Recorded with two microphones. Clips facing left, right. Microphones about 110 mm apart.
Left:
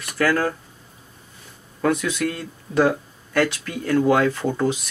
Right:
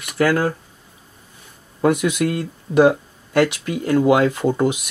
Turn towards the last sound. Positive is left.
turn(degrees=-15)  # may be behind; listen again after turning